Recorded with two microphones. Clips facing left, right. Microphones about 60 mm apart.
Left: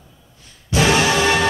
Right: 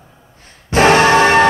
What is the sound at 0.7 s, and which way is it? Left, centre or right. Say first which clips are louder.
Music: right 7 dB; right.